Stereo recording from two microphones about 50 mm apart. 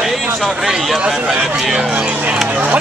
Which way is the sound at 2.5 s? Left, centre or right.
Right.